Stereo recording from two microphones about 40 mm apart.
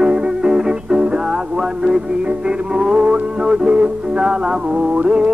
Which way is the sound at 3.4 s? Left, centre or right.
Right.